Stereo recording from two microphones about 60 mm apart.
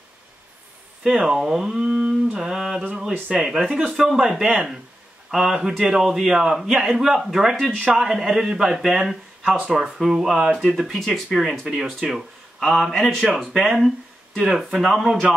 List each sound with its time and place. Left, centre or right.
1.0 s a man's voice: centre
3.9 s a man's voice: centre
7.7 s a man's voice: centre
8.1 s a man's voice: centre
9.4 s speech: centre
9.7 s a man's voice: centre
10.9 s a man's voice: centre